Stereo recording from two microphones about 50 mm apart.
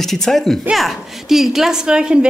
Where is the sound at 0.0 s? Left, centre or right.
Centre.